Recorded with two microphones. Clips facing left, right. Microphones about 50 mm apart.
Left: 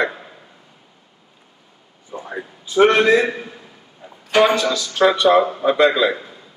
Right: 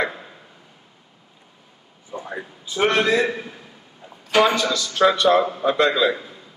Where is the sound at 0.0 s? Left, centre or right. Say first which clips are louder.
Left 3 dB; centre.